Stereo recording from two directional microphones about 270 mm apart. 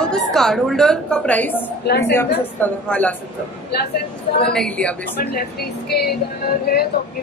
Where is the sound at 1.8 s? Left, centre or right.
Left.